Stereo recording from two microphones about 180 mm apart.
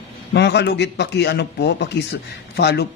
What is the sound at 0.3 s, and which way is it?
A man's voice, 70° left (ahead or behind).